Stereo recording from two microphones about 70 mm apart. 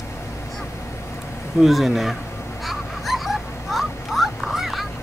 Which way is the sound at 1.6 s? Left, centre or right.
Centre.